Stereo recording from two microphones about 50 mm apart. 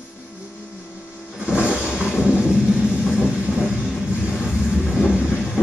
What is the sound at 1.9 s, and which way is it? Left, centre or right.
Music, right.